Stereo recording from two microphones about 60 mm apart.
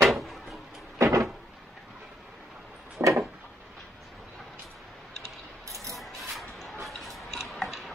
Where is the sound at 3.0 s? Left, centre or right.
Right.